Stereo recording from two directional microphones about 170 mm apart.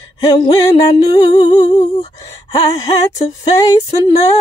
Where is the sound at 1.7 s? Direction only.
40° left (ahead or behind).